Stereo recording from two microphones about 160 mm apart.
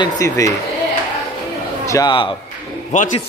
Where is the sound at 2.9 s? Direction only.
50° left (ahead or behind).